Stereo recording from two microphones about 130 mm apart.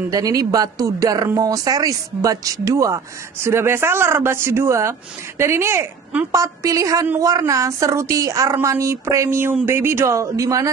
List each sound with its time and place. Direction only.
0.1 s a woman's voice: 25° right (ahead or behind)